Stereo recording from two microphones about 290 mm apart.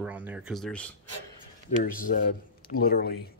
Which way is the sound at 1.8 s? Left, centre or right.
Left.